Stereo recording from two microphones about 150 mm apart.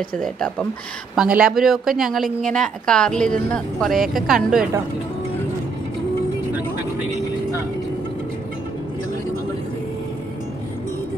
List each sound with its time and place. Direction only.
0.2 s a woman's voice: 5° left (ahead or behind)
1.1 s a woman's voice: 5° right (ahead or behind)